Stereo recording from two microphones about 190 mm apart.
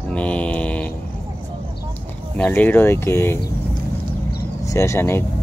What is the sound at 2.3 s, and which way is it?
Speech, 10° left (ahead or behind).